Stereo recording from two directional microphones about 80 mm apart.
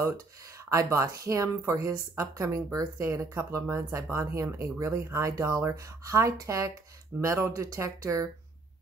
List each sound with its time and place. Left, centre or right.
0.7 s a woman's voice: right